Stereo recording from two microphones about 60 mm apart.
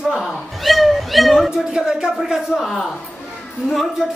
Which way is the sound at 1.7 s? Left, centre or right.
Centre.